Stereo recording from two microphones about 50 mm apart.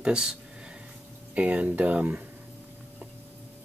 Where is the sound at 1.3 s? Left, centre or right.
Right.